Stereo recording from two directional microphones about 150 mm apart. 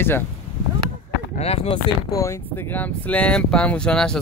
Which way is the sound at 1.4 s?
45° left (ahead or behind).